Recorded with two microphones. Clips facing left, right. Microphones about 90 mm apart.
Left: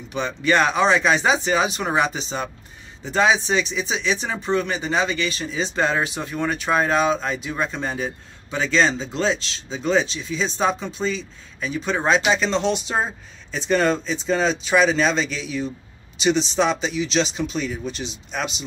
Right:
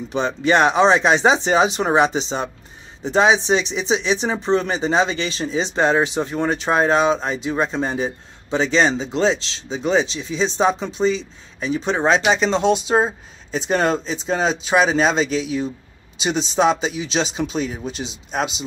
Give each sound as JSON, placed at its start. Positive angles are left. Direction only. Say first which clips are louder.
{"t": 0.1, "sound": "speech", "louder": "right 3 dB", "side_deg": -25}